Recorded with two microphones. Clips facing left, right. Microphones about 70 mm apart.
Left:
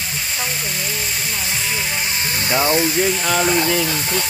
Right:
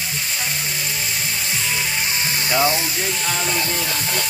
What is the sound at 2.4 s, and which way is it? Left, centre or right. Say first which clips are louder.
Speech: even; centre.